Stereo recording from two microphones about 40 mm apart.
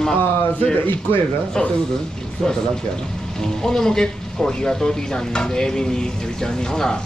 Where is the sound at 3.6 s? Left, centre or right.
Centre.